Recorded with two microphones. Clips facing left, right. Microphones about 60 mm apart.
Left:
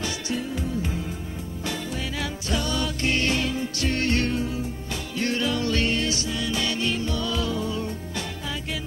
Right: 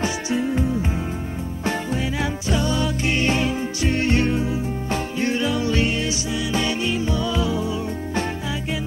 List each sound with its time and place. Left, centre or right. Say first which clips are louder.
0.0 s music: right 6 dB; right
2.0 s music: right 6 dB; right